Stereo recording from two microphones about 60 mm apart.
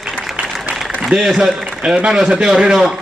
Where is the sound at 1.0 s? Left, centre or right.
Centre.